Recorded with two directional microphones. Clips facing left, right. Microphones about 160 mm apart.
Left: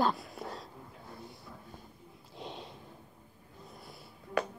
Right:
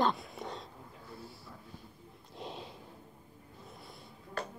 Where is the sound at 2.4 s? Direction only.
Centre (ahead or behind).